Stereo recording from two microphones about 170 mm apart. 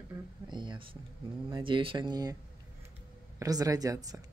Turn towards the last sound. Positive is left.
turn(degrees=-20)  # may be behind; listen again after turning